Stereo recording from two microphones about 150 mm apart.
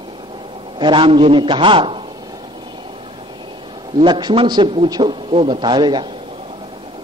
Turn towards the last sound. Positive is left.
turn(degrees=-30)  # may be behind; listen again after turning